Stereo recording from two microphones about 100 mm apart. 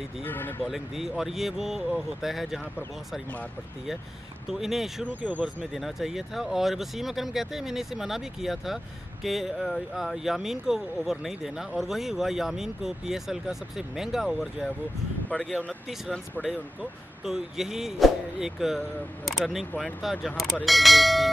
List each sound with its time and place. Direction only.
0.2 s speech: 20° left (ahead or behind)
0.6 s speech: centre (ahead or behind)
4.5 s speech: 5° right (ahead or behind)
5.3 s speech: 15° right (ahead or behind)
5.7 s speech: centre (ahead or behind)
15.3 s speech: 15° left (ahead or behind)
17.2 s speech: 5° right (ahead or behind)